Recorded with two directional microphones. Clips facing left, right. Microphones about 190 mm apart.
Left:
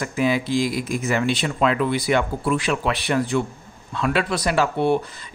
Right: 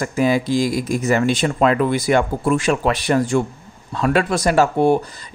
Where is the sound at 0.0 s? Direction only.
40° right (ahead or behind).